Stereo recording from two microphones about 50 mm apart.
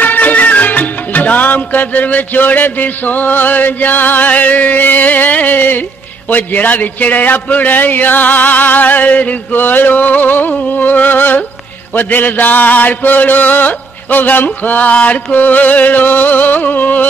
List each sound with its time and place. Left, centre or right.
0.0 s music: left
6.3 s mantra: left